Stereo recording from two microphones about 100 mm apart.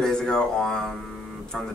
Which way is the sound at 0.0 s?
5° left (ahead or behind).